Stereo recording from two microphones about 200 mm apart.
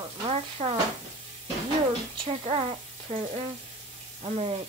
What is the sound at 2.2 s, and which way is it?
Speech, 30° right (ahead or behind).